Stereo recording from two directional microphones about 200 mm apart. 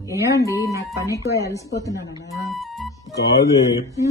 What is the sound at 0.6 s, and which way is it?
Speech, 15° right (ahead or behind).